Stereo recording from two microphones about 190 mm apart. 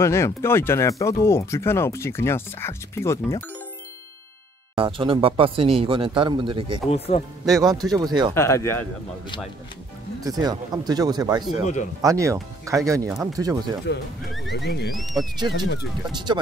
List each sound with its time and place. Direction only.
0.0 s speech: 15° left (ahead or behind)
4.7 s speech: 25° right (ahead or behind)
6.9 s speech: 30° left (ahead or behind)
7.6 s speech: 20° right (ahead or behind)
8.4 s speech: 15° left (ahead or behind)
10.2 s speech: 20° right (ahead or behind)
11.6 s speech: 40° left (ahead or behind)
12.0 s speech: 15° right (ahead or behind)
13.9 s speech: 65° left (ahead or behind)
14.9 s speech: centre (ahead or behind)
16.1 s speech: 25° right (ahead or behind)